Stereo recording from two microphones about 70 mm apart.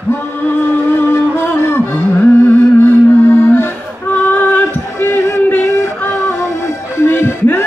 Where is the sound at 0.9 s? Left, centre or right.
Left.